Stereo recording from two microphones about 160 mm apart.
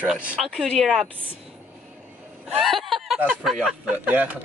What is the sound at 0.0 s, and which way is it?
Speech, 10° right (ahead or behind).